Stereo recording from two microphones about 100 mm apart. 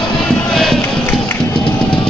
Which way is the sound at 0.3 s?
5° left (ahead or behind).